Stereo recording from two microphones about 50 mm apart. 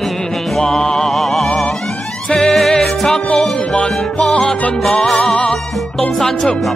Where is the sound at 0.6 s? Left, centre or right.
Centre.